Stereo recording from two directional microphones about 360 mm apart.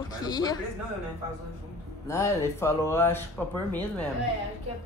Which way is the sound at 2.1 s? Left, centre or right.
Centre.